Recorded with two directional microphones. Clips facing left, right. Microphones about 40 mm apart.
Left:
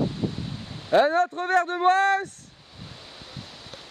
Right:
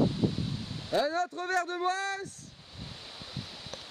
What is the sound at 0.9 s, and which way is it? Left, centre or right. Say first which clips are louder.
Speech: left 9 dB; left.